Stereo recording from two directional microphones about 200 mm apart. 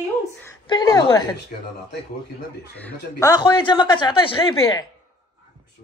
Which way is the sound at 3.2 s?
20° left (ahead or behind).